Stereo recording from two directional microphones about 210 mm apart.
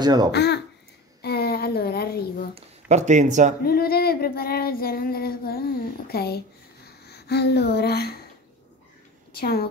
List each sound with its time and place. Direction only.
0.0 s speech: 20° right (ahead or behind)
0.3 s speech: 55° left (ahead or behind)
1.2 s a sound: 50° left (ahead or behind)
2.5 s speech: 35° right (ahead or behind)
3.6 s female singing: 45° left (ahead or behind)
9.3 s a woman's voice: 45° left (ahead or behind)